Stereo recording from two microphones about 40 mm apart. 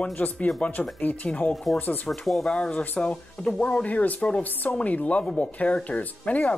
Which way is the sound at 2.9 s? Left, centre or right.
Left.